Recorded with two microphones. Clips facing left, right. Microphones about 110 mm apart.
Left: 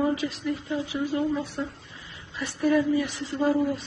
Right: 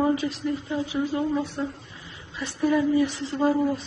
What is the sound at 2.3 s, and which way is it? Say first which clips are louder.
A woman's voice: even; 20° right (ahead or behind).